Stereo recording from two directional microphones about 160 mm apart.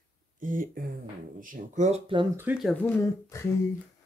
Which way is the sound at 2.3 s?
10° right (ahead or behind).